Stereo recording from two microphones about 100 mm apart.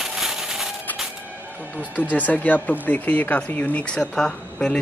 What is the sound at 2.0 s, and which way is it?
Speech, 15° left (ahead or behind).